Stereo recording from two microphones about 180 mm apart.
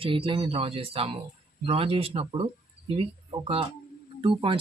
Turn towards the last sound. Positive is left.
turn(degrees=-30)  # may be behind; listen again after turning